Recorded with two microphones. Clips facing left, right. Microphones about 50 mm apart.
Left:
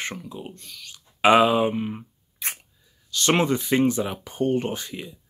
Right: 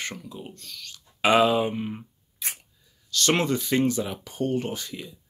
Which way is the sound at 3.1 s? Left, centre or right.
Left.